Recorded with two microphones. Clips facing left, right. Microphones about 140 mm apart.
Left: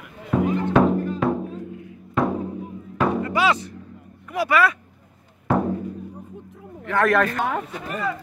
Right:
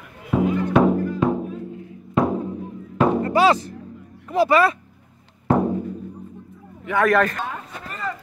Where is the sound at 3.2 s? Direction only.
35° right (ahead or behind).